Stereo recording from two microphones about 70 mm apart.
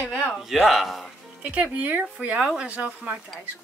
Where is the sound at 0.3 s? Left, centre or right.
Centre.